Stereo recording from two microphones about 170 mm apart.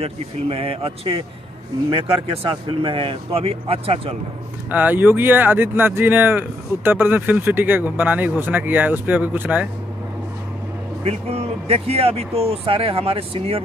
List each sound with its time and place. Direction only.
0.0 s speech: 35° right (ahead or behind)
4.6 s speech: 10° right (ahead or behind)
11.1 s speech: 35° right (ahead or behind)